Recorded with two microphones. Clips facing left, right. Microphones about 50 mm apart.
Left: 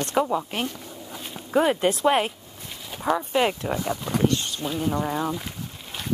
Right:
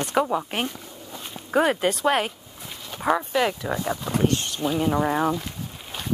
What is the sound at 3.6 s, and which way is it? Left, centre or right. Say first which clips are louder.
Speech: even; centre.